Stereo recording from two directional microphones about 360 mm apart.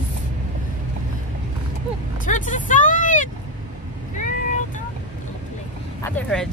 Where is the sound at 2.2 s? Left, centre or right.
Left.